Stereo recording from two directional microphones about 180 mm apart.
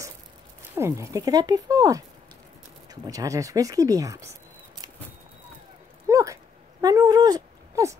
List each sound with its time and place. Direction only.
0.6 s speech: 15° right (ahead or behind)
6.0 s dog: 15° right (ahead or behind)